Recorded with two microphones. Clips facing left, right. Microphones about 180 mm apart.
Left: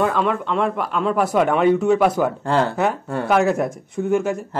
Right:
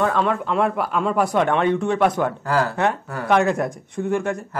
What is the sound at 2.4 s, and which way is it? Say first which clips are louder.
Speech: left 1 dB; 25° left (ahead or behind).